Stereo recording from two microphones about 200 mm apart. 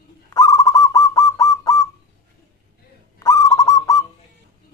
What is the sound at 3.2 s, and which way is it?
Owl, 15° left (ahead or behind).